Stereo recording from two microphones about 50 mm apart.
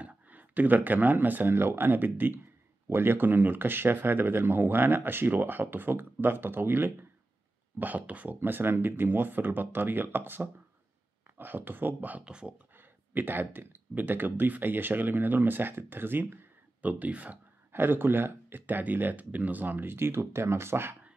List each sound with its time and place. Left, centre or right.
0.0 s speech: right
2.9 s speech: right
7.8 s speech: right
8.4 s speech: right
12.3 s speech: centre
13.1 s speech: right
16.8 s speech: right
17.7 s speech: right